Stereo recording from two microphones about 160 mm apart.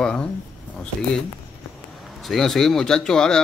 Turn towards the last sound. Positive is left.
turn(degrees=5)  # may be behind; listen again after turning